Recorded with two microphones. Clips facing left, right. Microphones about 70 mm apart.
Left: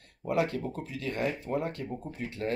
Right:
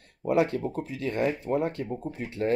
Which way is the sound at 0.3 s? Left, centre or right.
Right.